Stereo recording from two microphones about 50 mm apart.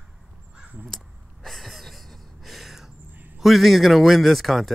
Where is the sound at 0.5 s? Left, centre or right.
Right.